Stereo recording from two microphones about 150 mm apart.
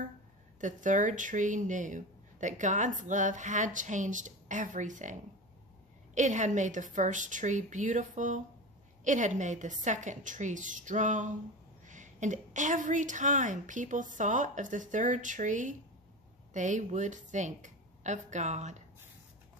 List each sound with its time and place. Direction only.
0.6 s speech: 60° right (ahead or behind)
6.1 s a woman's voice: 55° right (ahead or behind)